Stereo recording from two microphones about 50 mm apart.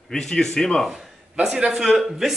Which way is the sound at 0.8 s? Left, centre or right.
Centre.